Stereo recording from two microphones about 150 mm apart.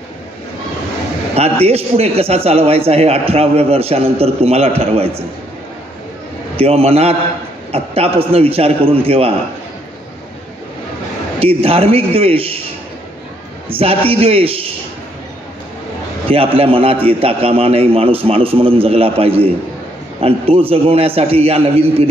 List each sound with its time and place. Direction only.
1.3 s a man's voice: 45° right (ahead or behind)
6.5 s a man's voice: 40° right (ahead or behind)
11.3 s a man's voice: 40° right (ahead or behind)
13.7 s a man's voice: 40° right (ahead or behind)
16.3 s a man's voice: 40° right (ahead or behind)